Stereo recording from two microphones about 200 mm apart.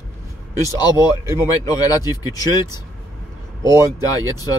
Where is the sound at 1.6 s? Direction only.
20° left (ahead or behind).